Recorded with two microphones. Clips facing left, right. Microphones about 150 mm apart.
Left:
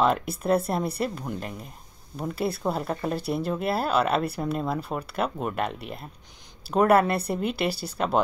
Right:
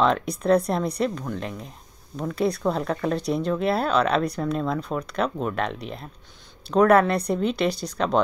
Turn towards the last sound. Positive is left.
turn(degrees=5)  # may be behind; listen again after turning